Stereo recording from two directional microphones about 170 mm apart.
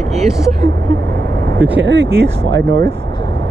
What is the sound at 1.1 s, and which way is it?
Vehicle, 85° right.